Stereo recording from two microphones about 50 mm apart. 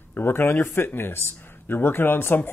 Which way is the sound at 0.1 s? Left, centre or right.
Left.